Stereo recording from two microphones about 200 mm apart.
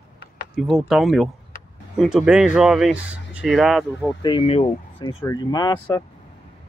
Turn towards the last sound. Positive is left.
turn(degrees=20)  # may be behind; listen again after turning